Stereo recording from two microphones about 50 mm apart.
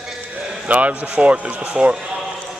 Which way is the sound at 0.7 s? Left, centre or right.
Right.